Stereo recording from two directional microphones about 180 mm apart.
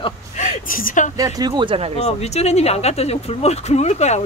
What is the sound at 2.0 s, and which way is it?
Speech, 35° left (ahead or behind).